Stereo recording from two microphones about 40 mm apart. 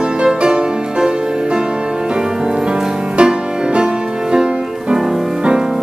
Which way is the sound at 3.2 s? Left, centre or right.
Right.